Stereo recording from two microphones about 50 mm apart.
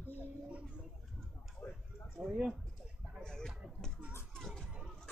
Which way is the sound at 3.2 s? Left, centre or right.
Centre.